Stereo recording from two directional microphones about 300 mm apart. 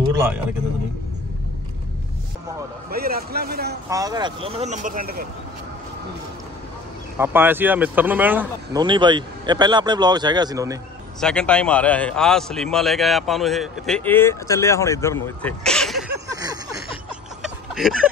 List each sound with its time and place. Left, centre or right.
2.9 s a man's voice: right
3.9 s speech: centre; by 5.2 s right
7.2 s speech: centre
11.1 s a man's voice: centre
16.3 s a sound: centre
17.4 s a sound: centre